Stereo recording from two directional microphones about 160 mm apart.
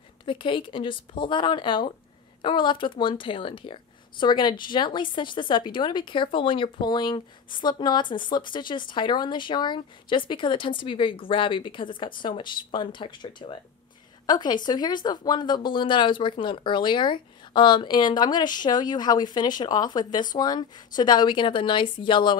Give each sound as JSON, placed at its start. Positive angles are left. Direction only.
{"t": 0.2, "sound": "a woman's voice", "side_deg": 30}